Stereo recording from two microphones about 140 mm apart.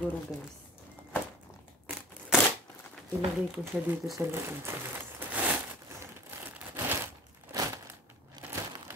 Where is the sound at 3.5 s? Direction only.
5° right (ahead or behind).